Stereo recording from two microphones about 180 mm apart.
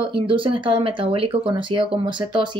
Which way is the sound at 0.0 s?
30° right (ahead or behind).